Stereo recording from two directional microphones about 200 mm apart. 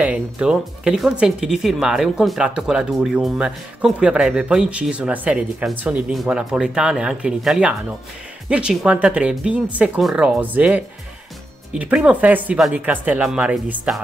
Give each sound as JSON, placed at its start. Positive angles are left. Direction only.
{"t": 0.0, "sound": "speech", "side_deg": -5}